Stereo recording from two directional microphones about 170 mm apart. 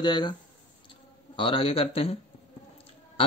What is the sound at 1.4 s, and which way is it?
Speech, 30° left (ahead or behind).